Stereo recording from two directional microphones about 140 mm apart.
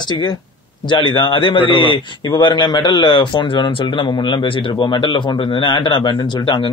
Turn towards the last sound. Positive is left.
turn(degrees=35)  # may be behind; listen again after turning